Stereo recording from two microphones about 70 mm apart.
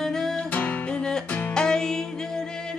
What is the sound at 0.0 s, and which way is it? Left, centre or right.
Music, centre.